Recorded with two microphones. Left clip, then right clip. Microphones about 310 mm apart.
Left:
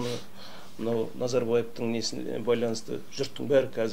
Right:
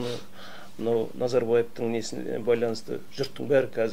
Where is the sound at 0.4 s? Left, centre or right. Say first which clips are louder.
Right 2 dB; right.